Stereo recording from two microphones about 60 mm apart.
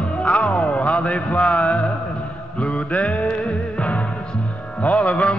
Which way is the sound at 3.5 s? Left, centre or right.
Left.